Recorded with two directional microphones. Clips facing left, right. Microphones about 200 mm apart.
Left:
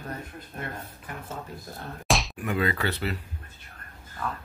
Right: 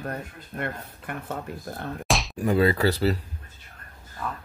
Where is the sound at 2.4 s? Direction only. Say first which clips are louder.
Right 6 dB; 35° right (ahead or behind).